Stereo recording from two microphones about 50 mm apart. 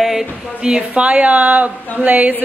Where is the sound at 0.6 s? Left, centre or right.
Centre.